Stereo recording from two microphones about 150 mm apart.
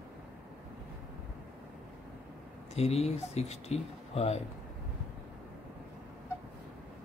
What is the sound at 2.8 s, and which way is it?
Speech, 45° left (ahead or behind).